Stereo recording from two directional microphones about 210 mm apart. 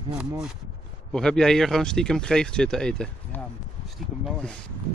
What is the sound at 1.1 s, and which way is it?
Speech, 5° left (ahead or behind).